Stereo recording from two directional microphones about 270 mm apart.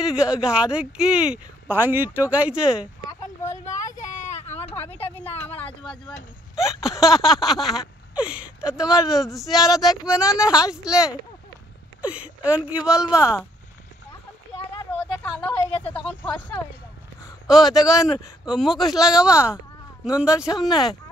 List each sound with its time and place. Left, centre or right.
0.0 s speech: centre
4.2 s vehicle: left
5.0 s a sound: left
6.6 s speech: centre
15.0 s a man's voice: centre